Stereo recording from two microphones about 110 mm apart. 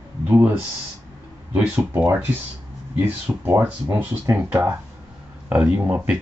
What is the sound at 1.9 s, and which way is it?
Speech, 15° right (ahead or behind).